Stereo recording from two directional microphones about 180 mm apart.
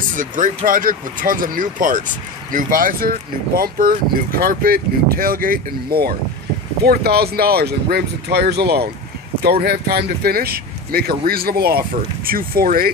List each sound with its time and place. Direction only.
0.1 s speech: 45° right (ahead or behind)